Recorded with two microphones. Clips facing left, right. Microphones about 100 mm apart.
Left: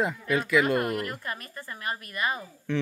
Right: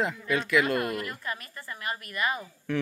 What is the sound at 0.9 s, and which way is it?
A woman's voice, 35° left (ahead or behind).